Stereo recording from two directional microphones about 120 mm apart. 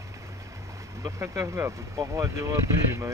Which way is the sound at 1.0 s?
25° right (ahead or behind).